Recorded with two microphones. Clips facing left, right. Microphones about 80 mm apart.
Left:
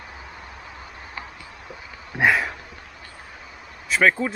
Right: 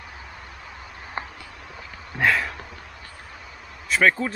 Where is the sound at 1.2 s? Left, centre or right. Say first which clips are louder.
Right 5 dB; right.